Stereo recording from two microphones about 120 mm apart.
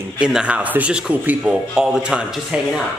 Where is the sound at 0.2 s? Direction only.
5° right (ahead or behind).